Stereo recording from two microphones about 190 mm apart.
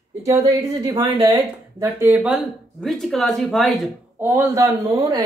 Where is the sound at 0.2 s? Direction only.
15° right (ahead or behind); by 3.9 s centre (ahead or behind).